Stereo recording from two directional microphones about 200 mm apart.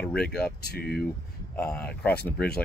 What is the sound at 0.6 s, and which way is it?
Speech, 55° left (ahead or behind).